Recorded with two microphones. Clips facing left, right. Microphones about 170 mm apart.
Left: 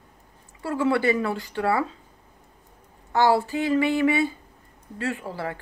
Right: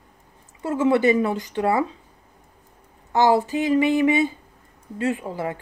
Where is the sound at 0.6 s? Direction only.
20° right (ahead or behind).